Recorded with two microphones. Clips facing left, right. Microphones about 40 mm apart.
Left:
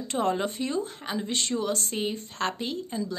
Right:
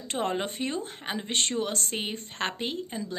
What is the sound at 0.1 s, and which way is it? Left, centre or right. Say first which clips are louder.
A woman's voice: left 2 dB; right.